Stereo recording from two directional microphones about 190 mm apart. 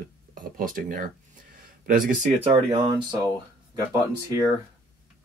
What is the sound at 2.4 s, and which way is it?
Speech, 35° right (ahead or behind).